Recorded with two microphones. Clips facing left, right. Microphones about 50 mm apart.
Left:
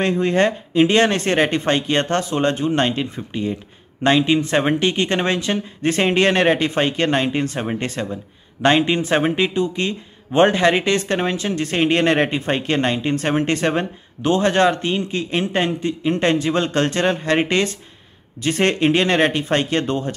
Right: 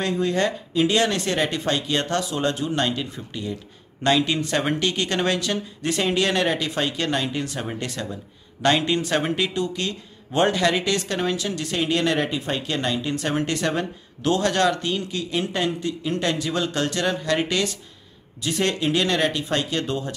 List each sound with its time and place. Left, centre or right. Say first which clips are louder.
0.0 s speech: left 5 dB; left